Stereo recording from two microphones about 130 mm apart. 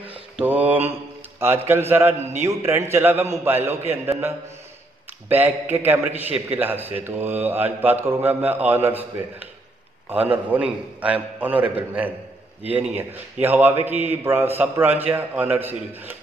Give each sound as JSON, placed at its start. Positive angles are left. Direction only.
{"t": 0.4, "sound": "a man's voice", "side_deg": -10}
{"t": 5.3, "sound": "speech", "side_deg": -15}
{"t": 10.0, "sound": "speech", "side_deg": -15}